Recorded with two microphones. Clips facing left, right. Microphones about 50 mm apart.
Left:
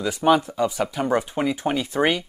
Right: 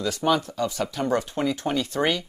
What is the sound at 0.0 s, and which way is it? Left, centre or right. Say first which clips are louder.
Speech: left 4 dB; centre.